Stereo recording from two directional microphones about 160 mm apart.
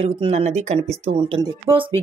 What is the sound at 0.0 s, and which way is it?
Speech, 40° right (ahead or behind).